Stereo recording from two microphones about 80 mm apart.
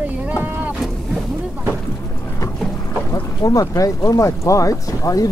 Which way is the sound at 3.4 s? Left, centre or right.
Left.